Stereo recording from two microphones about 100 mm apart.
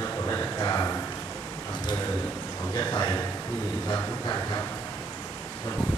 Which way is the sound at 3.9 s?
40° left (ahead or behind).